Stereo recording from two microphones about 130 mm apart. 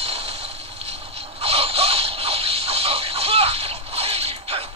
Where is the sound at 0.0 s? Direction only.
50° right (ahead or behind).